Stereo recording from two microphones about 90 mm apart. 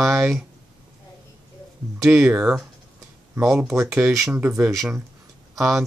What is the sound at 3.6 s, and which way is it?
Speech, 35° right (ahead or behind).